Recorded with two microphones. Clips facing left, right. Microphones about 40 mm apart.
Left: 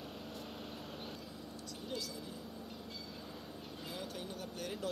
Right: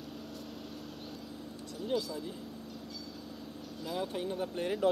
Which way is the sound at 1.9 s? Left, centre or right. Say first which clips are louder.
Right 10 dB; right.